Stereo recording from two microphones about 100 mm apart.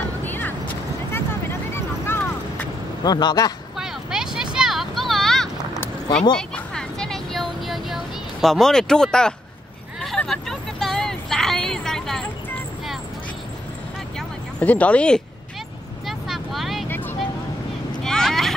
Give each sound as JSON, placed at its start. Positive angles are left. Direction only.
{"t": 0.2, "sound": "vehicle", "side_deg": 20}
{"t": 1.8, "sound": "vehicle", "side_deg": 20}
{"t": 3.0, "sound": "speech", "side_deg": 45}
{"t": 3.7, "sound": "vehicle", "side_deg": -5}
{"t": 6.3, "sound": "a sound", "side_deg": 5}
{"t": 9.9, "sound": "vehicle", "side_deg": 0}
{"t": 14.6, "sound": "speech", "side_deg": 15}
{"t": 16.1, "sound": "vehicle", "side_deg": 0}
{"t": 18.0, "sound": "a sound", "side_deg": 5}